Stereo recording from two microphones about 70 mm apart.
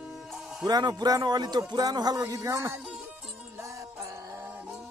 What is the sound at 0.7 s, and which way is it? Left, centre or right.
Speech, right.